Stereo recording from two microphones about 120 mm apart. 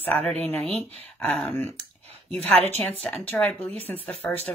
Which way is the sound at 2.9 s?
15° left (ahead or behind).